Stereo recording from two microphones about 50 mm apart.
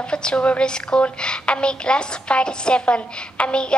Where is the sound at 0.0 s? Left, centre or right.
Centre.